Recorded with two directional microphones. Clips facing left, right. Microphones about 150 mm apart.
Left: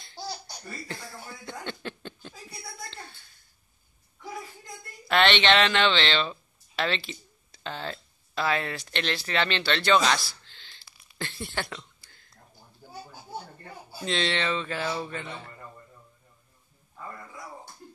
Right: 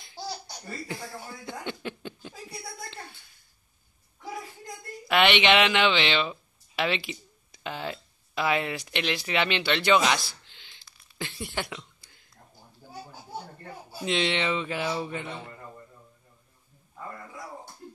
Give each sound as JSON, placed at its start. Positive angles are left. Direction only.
{"t": 0.0, "sound": "laughter", "side_deg": -5}
{"t": 1.4, "sound": "a sound", "side_deg": -10}
{"t": 5.0, "sound": "speech", "side_deg": -10}
{"t": 14.0, "sound": "a man's voice", "side_deg": -15}